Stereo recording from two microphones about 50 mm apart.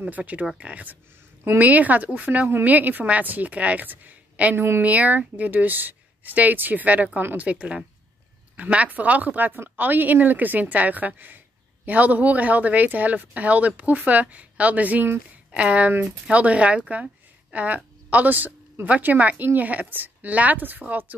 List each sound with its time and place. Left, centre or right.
0.0 s a woman's voice: right
4.6 s speech: right
4.8 s a woman's voice: right